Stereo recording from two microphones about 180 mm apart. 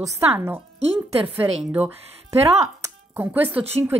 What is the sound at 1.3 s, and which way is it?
Speech, 5° right (ahead or behind).